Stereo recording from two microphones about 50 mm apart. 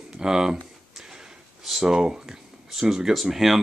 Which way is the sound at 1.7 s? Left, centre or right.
Centre.